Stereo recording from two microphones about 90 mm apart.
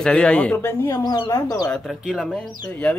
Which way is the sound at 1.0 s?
45° left (ahead or behind).